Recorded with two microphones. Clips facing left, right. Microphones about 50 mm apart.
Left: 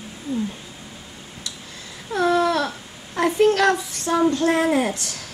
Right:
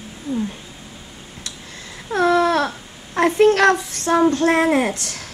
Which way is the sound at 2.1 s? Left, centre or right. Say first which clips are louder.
Right 3 dB; right.